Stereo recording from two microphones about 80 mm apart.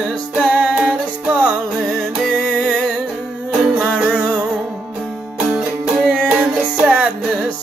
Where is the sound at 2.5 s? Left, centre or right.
Centre.